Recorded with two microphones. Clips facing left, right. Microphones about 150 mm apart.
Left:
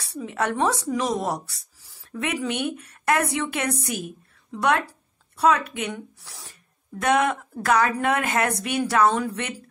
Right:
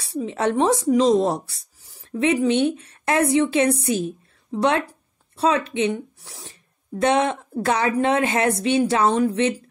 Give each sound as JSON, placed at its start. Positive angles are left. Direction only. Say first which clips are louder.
{"t": 0.1, "sound": "speech", "louder": "right 5 dB", "side_deg": -20}